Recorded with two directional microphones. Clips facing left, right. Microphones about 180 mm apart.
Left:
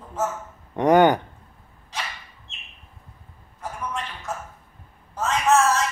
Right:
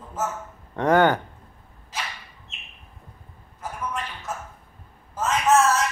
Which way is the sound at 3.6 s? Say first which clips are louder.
Even; centre (ahead or behind).